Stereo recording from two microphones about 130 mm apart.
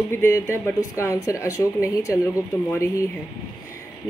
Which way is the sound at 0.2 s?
20° left (ahead or behind).